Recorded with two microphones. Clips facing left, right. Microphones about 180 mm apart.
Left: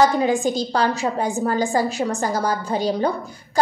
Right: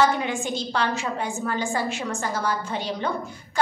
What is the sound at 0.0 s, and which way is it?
A woman's voice, 35° left (ahead or behind).